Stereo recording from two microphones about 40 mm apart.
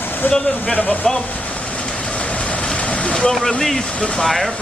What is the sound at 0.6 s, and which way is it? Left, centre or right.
Speech, centre.